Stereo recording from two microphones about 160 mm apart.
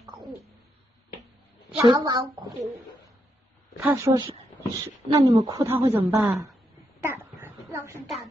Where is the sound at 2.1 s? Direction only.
20° right (ahead or behind).